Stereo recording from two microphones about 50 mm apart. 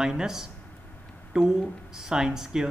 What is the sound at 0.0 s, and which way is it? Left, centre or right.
Speech, centre.